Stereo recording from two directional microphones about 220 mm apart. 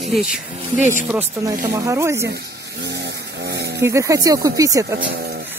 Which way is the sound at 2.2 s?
50° right (ahead or behind).